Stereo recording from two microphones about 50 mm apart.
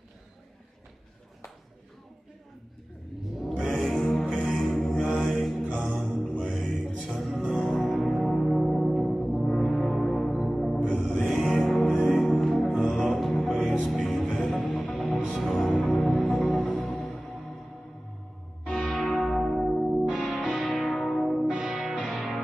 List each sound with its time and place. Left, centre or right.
3.4 s music: centre
8.0 s brass instrument: centre
10.9 s music: centre
18.7 s music: centre
20.1 s music: centre
20.5 s music: centre
21.5 s music: centre
22.0 s music: centre